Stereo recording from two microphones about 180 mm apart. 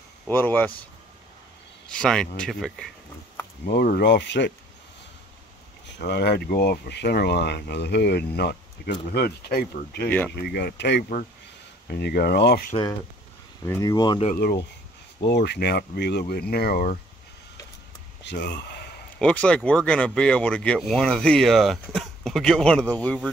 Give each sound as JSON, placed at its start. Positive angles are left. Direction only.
{"t": 0.3, "sound": "speech", "side_deg": 10}
{"t": 1.9, "sound": "speech", "side_deg": 5}
{"t": 3.6, "sound": "speech", "side_deg": 60}
{"t": 5.9, "sound": "speech", "side_deg": 65}
{"t": 10.0, "sound": "speech", "side_deg": 10}
{"t": 10.3, "sound": "speech", "side_deg": 65}
{"t": 13.7, "sound": "speech", "side_deg": 20}
{"t": 15.4, "sound": "speech", "side_deg": 70}
{"t": 18.2, "sound": "speech", "side_deg": 75}
{"t": 19.1, "sound": "speech", "side_deg": 5}